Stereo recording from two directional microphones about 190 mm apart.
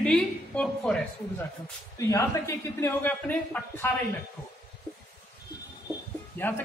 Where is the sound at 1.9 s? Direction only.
15° left (ahead or behind).